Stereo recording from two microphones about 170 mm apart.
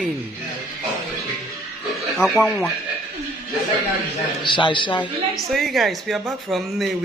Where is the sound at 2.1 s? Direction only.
Centre (ahead or behind).